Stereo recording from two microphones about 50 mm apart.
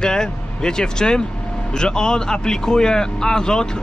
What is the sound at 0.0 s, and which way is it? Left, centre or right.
Speech, centre.